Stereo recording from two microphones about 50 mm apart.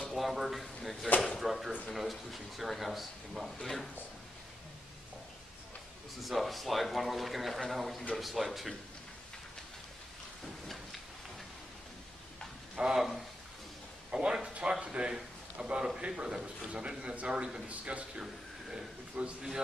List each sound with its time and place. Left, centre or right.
0.1 s speech: centre
6.2 s speech: centre
12.7 s speech: centre
14.1 s a man's voice: right
18.2 s a sound: centre
19.2 s a man's voice: centre